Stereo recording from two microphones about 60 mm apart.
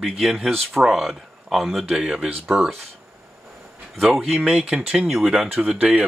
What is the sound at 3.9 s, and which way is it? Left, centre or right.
Speech, centre.